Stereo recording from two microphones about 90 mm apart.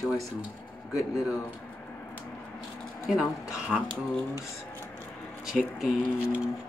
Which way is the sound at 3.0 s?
5° right (ahead or behind).